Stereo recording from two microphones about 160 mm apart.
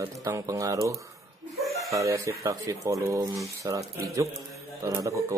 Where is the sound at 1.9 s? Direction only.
20° right (ahead or behind).